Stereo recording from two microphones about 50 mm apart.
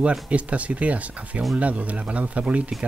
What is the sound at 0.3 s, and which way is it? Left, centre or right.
Speech, right.